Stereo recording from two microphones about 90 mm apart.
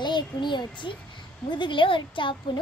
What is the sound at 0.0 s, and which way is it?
A child's voice, 60° left (ahead or behind).